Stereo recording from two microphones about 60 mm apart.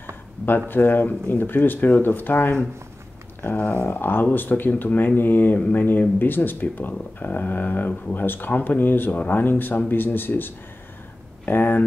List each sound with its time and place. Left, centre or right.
0.7 s speech: left